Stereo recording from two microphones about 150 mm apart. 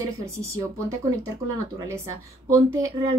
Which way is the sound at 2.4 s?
20° right (ahead or behind).